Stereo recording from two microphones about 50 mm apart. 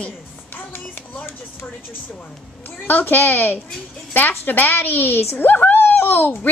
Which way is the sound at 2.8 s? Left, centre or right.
Left.